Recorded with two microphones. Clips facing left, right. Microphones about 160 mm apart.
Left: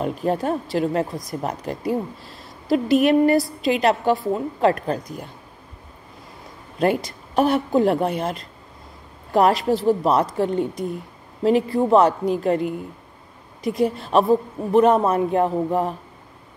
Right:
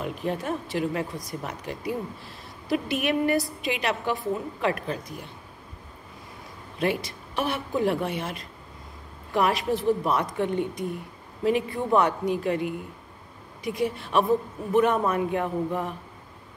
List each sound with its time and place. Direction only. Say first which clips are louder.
0.0 s a woman's voice: left 7 dB; 40° left (ahead or behind)
6.8 s a woman's voice: left 6 dB; 40° left (ahead or behind)
13.7 s a woman's voice: left 6 dB; 35° left (ahead or behind)